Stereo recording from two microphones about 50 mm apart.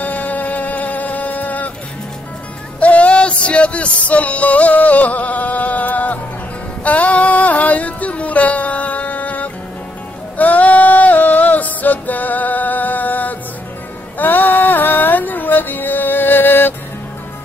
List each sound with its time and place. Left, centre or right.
0.0 s music: left
2.8 s music: left